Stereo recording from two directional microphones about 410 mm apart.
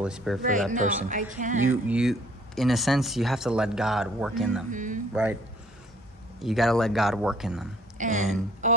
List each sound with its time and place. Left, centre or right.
0.0 s speech: centre
0.7 s speech: centre
1.9 s speech: centre
4.6 s speech: centre
5.1 s speech: centre
6.4 s speech: centre
8.0 s speech: centre
8.6 s music: centre